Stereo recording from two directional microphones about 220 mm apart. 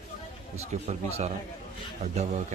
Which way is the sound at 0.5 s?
30° right (ahead or behind).